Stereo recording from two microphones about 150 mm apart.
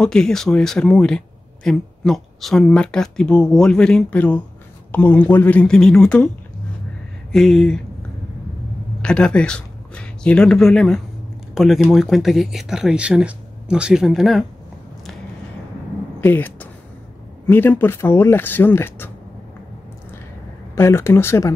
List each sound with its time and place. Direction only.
0.0 s speech: 5° left (ahead or behind)
7.3 s speech: 5° left (ahead or behind)
9.0 s speech: 5° left (ahead or behind)
16.2 s speech: 15° left (ahead or behind)
20.7 s speech: 15° left (ahead or behind)